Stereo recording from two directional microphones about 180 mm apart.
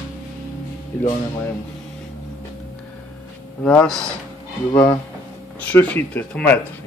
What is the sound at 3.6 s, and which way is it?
Speech, 5° left (ahead or behind).